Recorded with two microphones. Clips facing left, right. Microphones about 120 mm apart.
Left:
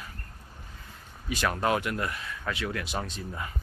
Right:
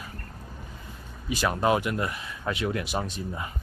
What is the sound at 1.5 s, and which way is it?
Speech, 15° right (ahead or behind).